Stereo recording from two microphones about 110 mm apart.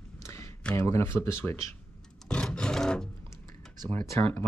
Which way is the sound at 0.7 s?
25° left (ahead or behind).